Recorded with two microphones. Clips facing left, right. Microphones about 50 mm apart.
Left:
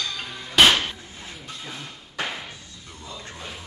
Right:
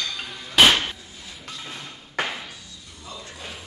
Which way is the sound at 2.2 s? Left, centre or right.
Right.